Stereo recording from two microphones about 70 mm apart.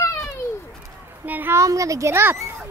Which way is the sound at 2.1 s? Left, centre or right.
Right.